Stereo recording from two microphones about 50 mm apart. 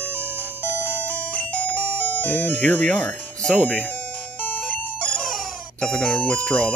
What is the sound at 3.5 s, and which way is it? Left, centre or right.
Speech, left.